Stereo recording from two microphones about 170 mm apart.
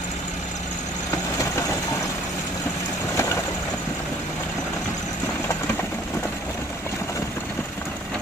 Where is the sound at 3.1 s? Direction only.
15° left (ahead or behind).